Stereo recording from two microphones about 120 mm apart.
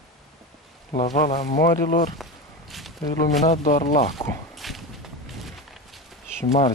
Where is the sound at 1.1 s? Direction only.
90° left.